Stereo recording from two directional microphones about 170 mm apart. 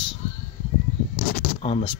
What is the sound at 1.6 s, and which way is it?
Speech, 30° left (ahead or behind).